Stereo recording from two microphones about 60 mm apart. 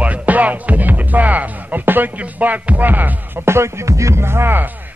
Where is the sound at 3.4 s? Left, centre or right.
Right.